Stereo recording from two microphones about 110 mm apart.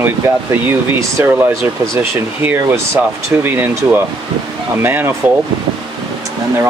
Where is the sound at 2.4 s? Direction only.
20° right (ahead or behind).